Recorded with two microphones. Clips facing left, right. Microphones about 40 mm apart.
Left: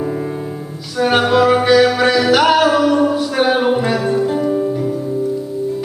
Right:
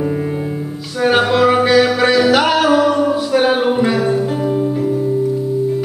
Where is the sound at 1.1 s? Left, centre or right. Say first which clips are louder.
Even; centre.